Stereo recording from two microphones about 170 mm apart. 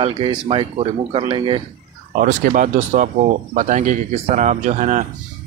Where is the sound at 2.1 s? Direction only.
50° right (ahead or behind).